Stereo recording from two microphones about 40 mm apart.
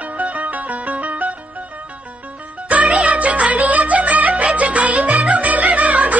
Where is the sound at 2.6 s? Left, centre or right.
Right.